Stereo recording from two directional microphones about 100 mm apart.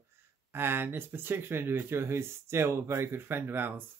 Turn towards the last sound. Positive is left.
turn(degrees=-20)  # may be behind; listen again after turning